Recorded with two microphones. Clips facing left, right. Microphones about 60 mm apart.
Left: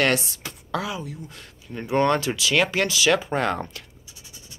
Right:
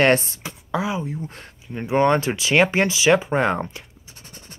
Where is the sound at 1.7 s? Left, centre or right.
Centre.